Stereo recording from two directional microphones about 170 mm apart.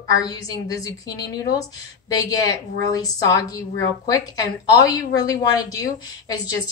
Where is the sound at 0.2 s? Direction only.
20° left (ahead or behind).